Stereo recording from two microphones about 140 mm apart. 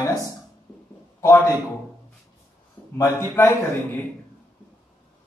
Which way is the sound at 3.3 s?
15° left (ahead or behind).